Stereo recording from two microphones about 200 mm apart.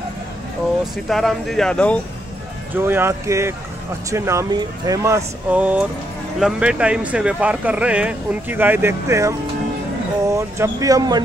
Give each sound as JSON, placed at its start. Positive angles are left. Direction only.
{"t": 1.0, "sound": "speech", "side_deg": 0}
{"t": 2.7, "sound": "speech", "side_deg": -10}
{"t": 10.3, "sound": "speech", "side_deg": -15}